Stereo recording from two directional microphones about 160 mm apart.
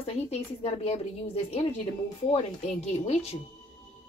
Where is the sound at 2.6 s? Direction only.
40° left (ahead or behind).